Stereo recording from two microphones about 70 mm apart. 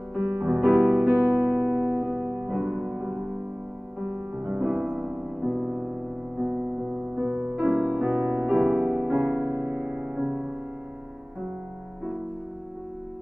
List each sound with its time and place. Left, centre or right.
0.1 s music: right
1.1 s music: centre
1.6 s music: centre
4.4 s music: right
4.6 s music: centre
7.2 s music: right
7.7 s music: right
8.0 s music: right
8.5 s music: centre
9.4 s music: right
9.9 s music: centre